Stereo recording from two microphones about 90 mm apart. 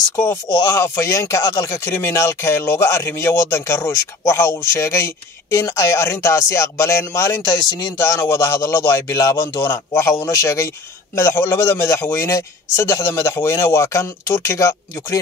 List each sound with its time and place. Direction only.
0.1 s speech: 25° left (ahead or behind); by 1.6 s 45° left (ahead or behind)
1.6 s speech: 25° left (ahead or behind)